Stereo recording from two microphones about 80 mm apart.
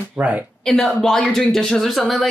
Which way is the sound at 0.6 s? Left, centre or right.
Centre.